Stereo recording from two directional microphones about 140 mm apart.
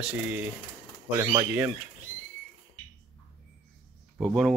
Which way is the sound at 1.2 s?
35° right (ahead or behind).